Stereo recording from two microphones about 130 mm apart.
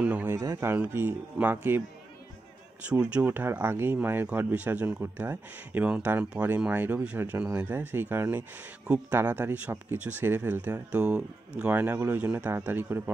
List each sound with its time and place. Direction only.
0.0 s speech: 10° right (ahead or behind)
0.4 s speech: 25° right (ahead or behind)
2.9 s speech: 10° right (ahead or behind)